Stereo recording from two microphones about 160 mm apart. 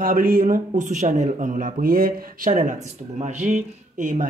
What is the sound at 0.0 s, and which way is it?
Speech, 65° right (ahead or behind).